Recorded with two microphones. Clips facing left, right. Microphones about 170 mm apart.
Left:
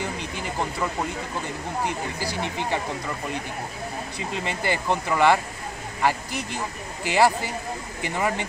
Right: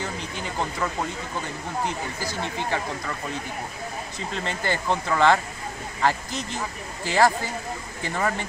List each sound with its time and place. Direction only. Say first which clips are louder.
2.1 s speech: left 1 dB; 15° left (ahead or behind)
4.3 s speech: left 1 dB; 10° left (ahead or behind)